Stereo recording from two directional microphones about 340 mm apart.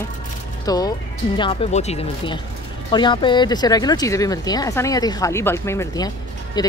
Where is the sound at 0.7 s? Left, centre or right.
Centre.